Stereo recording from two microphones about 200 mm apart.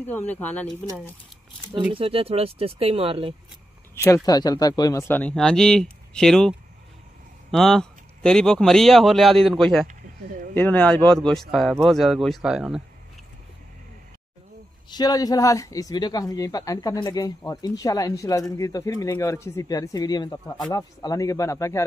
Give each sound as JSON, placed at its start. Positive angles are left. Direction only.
{"t": 0.0, "sound": "speech", "side_deg": 10}
{"t": 2.0, "sound": "speech", "side_deg": -30}
{"t": 3.9, "sound": "speech", "side_deg": 15}
{"t": 7.5, "sound": "speech", "side_deg": 0}
{"t": 9.8, "sound": "a sound", "side_deg": -40}
{"t": 10.5, "sound": "speech", "side_deg": 5}
{"t": 14.9, "sound": "speech", "side_deg": 20}
{"t": 20.4, "sound": "speech", "side_deg": 5}
{"t": 20.7, "sound": "speech", "side_deg": 20}